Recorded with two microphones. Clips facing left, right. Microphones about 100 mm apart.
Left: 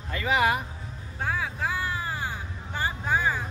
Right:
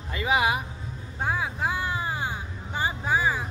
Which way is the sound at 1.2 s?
20° right (ahead or behind).